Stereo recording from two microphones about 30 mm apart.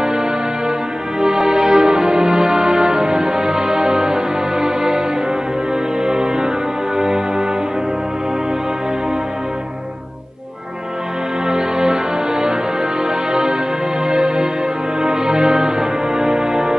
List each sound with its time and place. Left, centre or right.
0.0 s music: right
6.0 s music: right
11.4 s music: right